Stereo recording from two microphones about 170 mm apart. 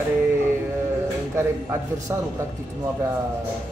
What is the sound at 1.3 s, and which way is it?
Speech, 15° right (ahead or behind).